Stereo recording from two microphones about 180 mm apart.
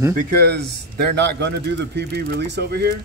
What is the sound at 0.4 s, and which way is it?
A man's voice, 65° right (ahead or behind).